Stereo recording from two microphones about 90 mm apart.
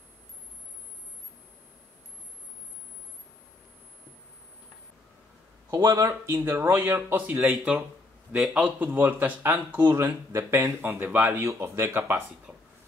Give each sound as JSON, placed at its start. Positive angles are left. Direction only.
{"t": 5.7, "sound": "speech", "side_deg": -40}
{"t": 6.5, "sound": "speech", "side_deg": -20}
{"t": 11.4, "sound": "speech", "side_deg": -30}